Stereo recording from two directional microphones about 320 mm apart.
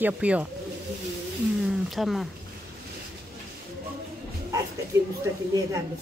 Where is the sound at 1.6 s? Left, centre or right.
Centre.